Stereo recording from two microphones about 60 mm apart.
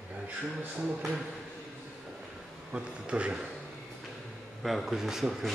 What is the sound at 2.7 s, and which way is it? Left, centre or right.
Speech, centre.